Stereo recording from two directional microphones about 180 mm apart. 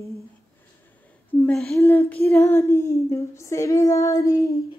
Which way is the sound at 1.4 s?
5° left (ahead or behind).